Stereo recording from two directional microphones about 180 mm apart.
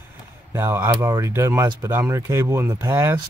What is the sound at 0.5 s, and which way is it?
Speech, 15° right (ahead or behind).